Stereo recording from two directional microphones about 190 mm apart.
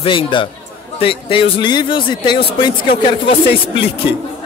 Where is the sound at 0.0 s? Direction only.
25° left (ahead or behind).